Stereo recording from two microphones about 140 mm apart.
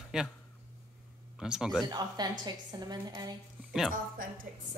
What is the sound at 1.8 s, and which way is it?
A woman's voice, 30° right (ahead or behind).